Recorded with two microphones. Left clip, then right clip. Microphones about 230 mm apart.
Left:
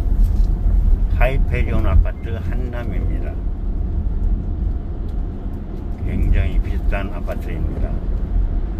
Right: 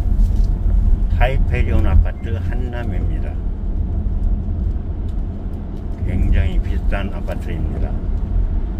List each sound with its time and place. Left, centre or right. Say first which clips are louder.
1.2 s speech: even; centre
6.3 s speech: right 1 dB; centre